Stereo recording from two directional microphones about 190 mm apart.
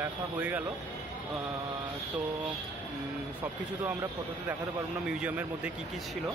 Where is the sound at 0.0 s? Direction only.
10° right (ahead or behind).